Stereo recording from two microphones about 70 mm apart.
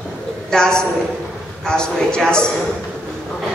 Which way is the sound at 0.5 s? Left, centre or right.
Centre.